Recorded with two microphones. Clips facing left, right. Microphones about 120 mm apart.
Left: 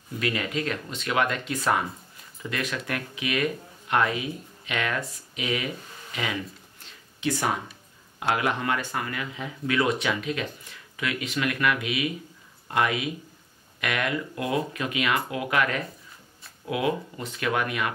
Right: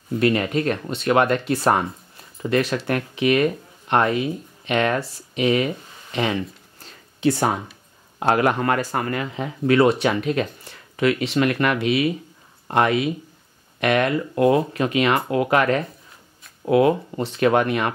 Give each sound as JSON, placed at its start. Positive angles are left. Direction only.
{"t": 0.2, "sound": "speech", "side_deg": -40}
{"t": 6.1, "sound": "a sound", "side_deg": -35}
{"t": 8.2, "sound": "speech", "side_deg": -45}
{"t": 10.0, "sound": "speech", "side_deg": -45}